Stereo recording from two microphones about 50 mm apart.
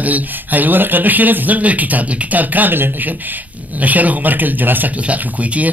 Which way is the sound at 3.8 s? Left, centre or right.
Right.